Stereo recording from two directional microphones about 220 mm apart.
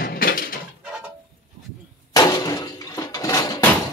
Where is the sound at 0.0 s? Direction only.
40° left (ahead or behind).